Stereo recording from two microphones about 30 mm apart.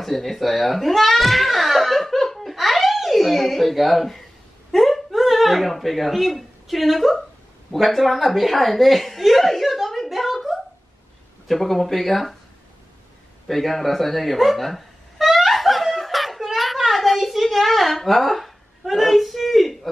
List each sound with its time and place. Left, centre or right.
0.0 s a sound: centre
4.7 s wail: centre
5.1 s a woman's voice: centre
10.0 s a sound: centre
11.4 s speech: centre
13.5 s cat: centre